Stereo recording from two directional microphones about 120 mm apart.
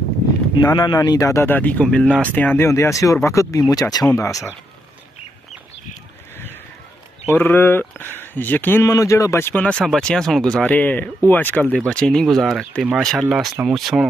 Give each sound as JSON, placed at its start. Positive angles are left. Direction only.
{"t": 0.6, "sound": "speech", "side_deg": 35}
{"t": 7.2, "sound": "speech", "side_deg": 15}